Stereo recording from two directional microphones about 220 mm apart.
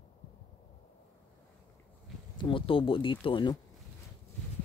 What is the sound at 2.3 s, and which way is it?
Speech, 20° left (ahead or behind).